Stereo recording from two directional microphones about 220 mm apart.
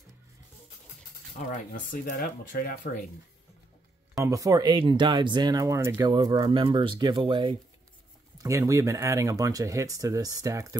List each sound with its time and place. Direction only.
1.5 s speech: 40° left (ahead or behind)
4.2 s speech: 15° right (ahead or behind)